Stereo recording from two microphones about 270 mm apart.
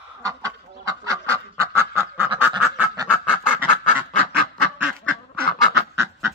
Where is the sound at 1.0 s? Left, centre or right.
Centre.